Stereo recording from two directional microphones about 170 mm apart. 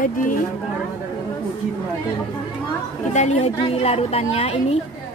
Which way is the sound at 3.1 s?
40° left (ahead or behind).